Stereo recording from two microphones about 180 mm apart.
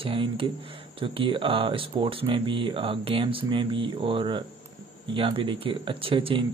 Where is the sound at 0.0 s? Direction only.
30° right (ahead or behind).